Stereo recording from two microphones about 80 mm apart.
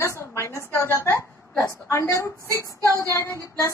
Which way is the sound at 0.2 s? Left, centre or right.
Left.